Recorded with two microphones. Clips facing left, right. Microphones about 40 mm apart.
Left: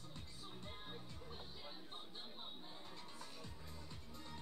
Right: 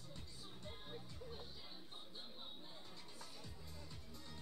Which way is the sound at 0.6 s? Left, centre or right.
Centre.